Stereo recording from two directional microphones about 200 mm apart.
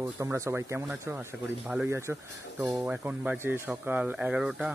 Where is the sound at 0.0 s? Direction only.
15° right (ahead or behind).